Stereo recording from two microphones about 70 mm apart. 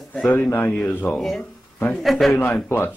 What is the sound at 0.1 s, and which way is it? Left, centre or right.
Speech, left.